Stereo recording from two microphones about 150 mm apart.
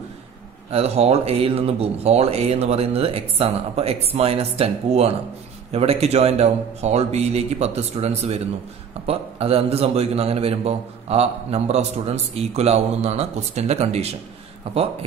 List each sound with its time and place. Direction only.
0.7 s a man's voice: 40° right (ahead or behind)